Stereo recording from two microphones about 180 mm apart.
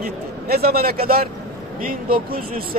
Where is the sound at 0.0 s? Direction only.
60° right (ahead or behind).